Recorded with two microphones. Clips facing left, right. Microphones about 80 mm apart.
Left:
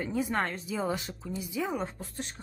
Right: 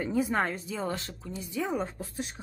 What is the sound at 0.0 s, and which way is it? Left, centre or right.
Speech, centre.